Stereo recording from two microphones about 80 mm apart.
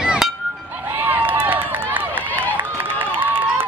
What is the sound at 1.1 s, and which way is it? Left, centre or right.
Run, right.